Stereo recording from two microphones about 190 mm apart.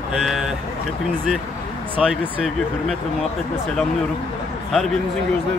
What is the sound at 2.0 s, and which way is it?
Speech, centre (ahead or behind).